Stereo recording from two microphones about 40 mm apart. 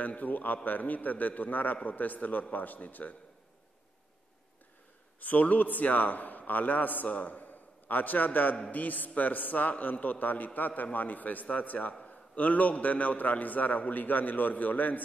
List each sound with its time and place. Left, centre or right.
0.0 s a man's voice: left
5.2 s a man's voice: left